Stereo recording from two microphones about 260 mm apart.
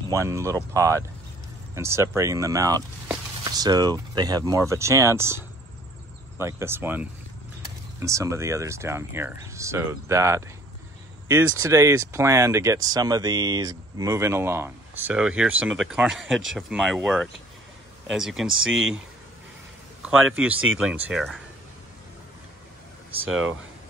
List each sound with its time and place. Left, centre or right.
0.1 s speech: centre
18.5 s speech: right
20.0 s a man's voice: centre
23.2 s speech: right